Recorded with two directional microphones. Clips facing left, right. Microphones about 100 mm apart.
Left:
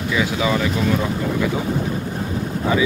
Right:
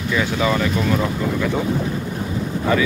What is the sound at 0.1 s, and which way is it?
Speech, 10° left (ahead or behind).